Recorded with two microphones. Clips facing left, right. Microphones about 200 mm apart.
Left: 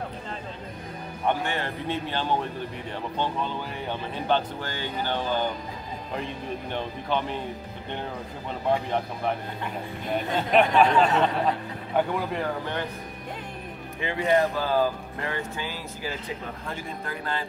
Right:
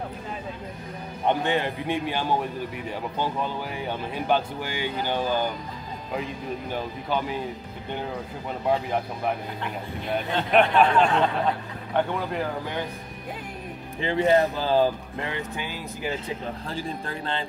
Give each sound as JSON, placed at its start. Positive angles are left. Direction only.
{"t": 1.2, "sound": "speech", "side_deg": -20}
{"t": 10.1, "sound": "speech", "side_deg": 0}
{"t": 14.0, "sound": "speech", "side_deg": -30}
{"t": 16.6, "sound": "speech", "side_deg": -30}